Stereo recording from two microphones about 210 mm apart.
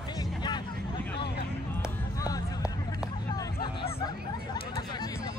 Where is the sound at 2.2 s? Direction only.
15° left (ahead or behind).